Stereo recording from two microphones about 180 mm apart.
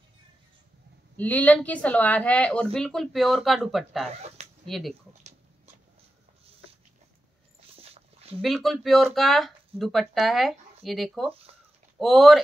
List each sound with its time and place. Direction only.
1.1 s speech: 10° left (ahead or behind)
7.8 s dog: 35° right (ahead or behind)
8.4 s speech: centre (ahead or behind)